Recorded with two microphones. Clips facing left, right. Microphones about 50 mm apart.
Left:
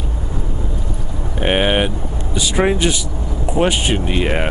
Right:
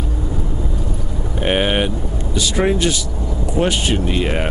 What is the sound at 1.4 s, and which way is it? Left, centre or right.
Vehicle, centre.